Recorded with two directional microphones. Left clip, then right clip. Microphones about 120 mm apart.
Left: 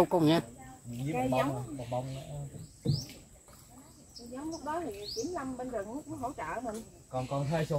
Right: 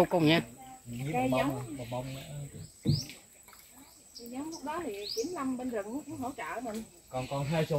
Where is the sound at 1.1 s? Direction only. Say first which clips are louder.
Right 1 dB; 45° left (ahead or behind).